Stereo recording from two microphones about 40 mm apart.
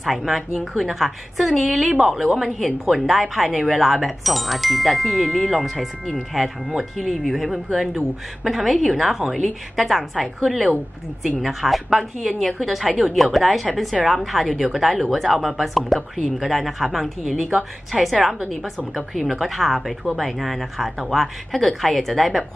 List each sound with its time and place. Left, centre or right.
0.0 s a woman's voice: centre
7.0 s a woman's voice: centre
17.5 s a woman's voice: centre